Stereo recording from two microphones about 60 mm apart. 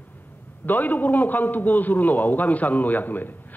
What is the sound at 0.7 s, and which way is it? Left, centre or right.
A man's voice, left.